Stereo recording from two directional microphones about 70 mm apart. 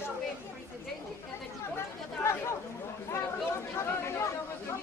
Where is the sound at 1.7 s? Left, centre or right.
Left.